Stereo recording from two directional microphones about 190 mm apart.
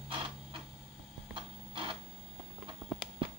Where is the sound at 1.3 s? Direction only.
25° right (ahead or behind).